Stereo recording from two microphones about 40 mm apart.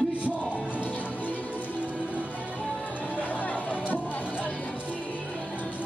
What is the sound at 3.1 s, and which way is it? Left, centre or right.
Music, left.